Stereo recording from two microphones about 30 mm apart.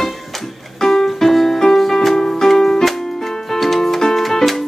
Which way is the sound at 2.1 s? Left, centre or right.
Centre.